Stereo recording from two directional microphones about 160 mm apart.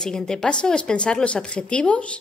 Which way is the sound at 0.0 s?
5° left (ahead or behind).